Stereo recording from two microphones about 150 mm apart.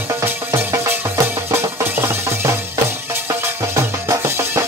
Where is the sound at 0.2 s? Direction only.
15° right (ahead or behind).